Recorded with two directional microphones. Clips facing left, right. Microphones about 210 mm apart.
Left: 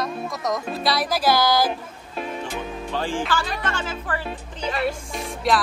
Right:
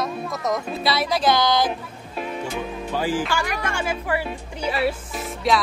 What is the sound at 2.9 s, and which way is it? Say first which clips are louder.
Speech: right 1 dB; 10° right (ahead or behind).